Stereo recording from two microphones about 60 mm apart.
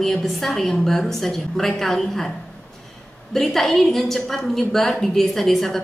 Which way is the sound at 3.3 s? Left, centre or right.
Centre.